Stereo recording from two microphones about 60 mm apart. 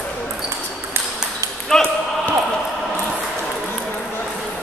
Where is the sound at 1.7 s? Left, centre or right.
Centre.